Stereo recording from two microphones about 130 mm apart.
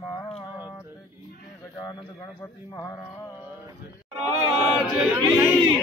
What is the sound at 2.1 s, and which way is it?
Speech, 20° left (ahead or behind).